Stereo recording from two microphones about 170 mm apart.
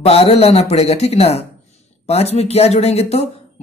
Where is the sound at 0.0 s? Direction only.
35° left (ahead or behind).